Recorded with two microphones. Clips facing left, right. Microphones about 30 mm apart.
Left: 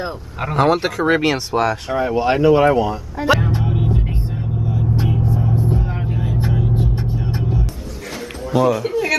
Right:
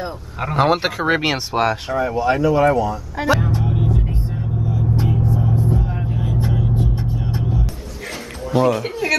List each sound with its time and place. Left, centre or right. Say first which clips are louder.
0.6 s speech: left 1 dB; centre
2.0 s speech: left 2 dB; left
3.3 s music: left 2 dB; centre
4.6 s vehicle: even; centre
5.6 s vehicle: even; left
6.0 s vehicle: left 1 dB; centre
8.5 s speech: left 1 dB; centre